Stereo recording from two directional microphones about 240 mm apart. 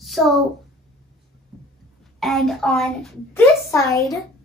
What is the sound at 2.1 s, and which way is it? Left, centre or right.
A child's voice, centre.